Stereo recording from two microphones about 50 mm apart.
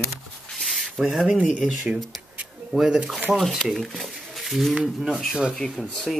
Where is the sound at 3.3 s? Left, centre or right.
Centre.